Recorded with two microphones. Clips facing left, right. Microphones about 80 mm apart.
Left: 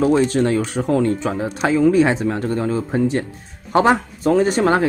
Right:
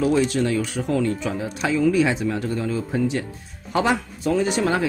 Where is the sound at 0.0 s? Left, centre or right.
Left.